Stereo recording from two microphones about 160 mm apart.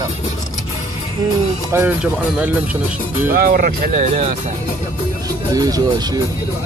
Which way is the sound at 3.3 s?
65° right (ahead or behind).